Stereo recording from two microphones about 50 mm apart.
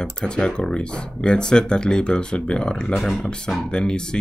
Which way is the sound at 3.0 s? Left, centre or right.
Centre.